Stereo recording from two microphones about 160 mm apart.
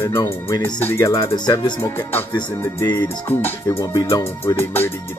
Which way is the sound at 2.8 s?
25° left (ahead or behind).